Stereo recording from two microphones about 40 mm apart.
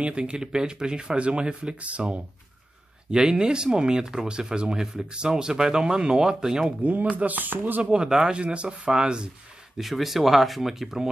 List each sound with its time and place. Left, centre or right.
0.0 s speech: right
3.1 s speech: centre
6.8 s speech: right
7.5 s speech: right
7.9 s speech: centre
9.8 s speech: centre